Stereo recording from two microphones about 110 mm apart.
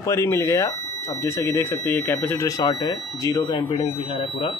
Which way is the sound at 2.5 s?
35° left (ahead or behind).